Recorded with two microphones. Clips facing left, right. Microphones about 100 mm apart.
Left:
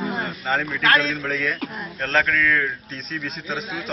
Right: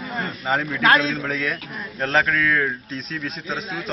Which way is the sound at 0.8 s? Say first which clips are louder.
Right 3 dB; 20° right (ahead or behind).